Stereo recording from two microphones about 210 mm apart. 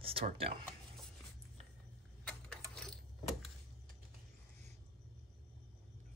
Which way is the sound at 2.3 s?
5° left (ahead or behind).